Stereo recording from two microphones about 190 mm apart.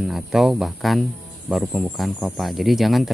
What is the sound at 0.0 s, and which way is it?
Speech, centre (ahead or behind).